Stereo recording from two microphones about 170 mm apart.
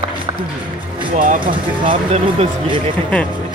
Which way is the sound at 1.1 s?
50° right (ahead or behind).